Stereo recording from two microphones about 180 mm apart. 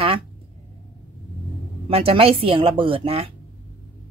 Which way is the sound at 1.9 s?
30° right (ahead or behind).